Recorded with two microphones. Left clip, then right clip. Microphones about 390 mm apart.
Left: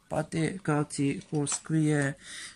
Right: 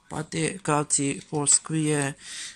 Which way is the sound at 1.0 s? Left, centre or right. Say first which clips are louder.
Right 2 dB; right.